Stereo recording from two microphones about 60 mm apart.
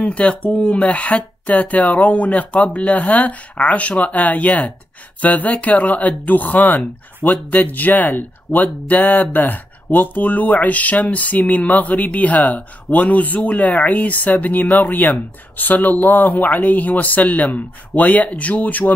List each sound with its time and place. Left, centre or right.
0.1 s speech: centre
8.5 s speech: centre
8.8 s speech: left